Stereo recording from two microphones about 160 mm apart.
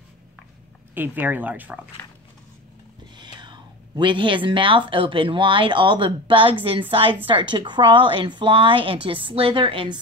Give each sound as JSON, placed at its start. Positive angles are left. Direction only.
{"t": 0.9, "sound": "speech", "side_deg": -10}
{"t": 3.2, "sound": "a woman's voice", "side_deg": -30}